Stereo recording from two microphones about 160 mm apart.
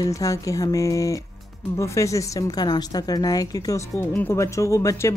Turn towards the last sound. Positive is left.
turn(degrees=20)  # may be behind; listen again after turning